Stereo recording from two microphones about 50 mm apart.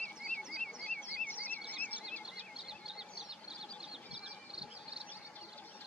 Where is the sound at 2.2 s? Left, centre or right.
Centre.